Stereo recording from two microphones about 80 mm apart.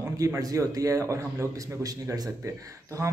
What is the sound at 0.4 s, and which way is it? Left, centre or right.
A man's voice, right.